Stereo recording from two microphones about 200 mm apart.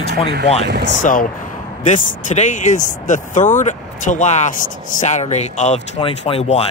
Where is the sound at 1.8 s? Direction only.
40° left (ahead or behind).